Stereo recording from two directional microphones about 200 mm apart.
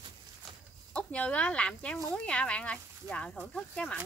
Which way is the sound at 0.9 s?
5° left (ahead or behind).